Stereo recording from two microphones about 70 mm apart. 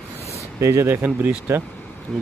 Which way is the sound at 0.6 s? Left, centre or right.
Right.